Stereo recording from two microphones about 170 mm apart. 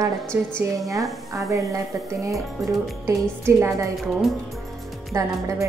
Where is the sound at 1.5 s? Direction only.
20° right (ahead or behind).